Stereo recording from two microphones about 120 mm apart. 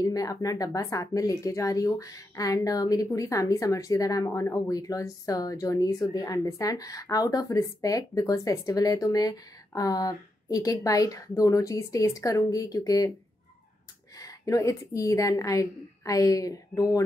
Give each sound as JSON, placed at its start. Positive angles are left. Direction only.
{"t": 0.0, "sound": "speech", "side_deg": 30}
{"t": 14.1, "sound": "a woman's voice", "side_deg": 30}